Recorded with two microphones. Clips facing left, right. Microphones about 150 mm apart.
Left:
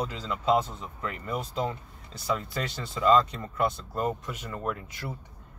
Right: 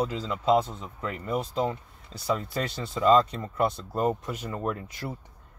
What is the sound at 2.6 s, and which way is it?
Speech, 30° right (ahead or behind).